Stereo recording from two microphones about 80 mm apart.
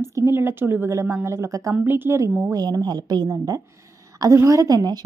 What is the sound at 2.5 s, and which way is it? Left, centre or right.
A woman's voice, right.